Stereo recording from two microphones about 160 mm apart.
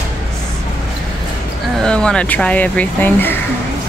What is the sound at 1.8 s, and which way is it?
Speech, 5° left (ahead or behind).